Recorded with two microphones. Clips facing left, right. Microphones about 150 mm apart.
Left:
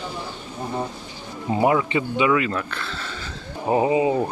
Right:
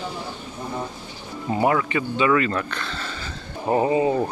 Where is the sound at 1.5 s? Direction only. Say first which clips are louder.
Left 1 dB; 20° left (ahead or behind); by 3.2 s centre (ahead or behind).